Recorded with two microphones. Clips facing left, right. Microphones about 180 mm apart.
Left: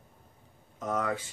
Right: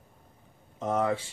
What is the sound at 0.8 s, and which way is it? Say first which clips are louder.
Speech: right 4 dB; 25° right (ahead or behind).